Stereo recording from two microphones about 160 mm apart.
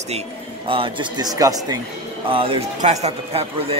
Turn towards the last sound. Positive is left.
turn(degrees=-40)  # may be behind; listen again after turning